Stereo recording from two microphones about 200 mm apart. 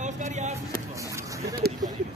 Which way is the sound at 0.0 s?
35° right (ahead or behind).